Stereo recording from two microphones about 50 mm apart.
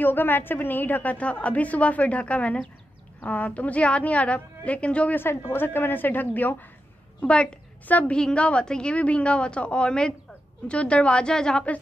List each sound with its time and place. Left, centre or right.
0.0 s a woman's voice: left
5.3 s a woman's voice: left
7.2 s a woman's voice: left